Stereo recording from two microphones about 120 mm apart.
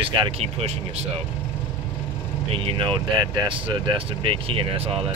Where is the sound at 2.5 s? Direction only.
50° right (ahead or behind).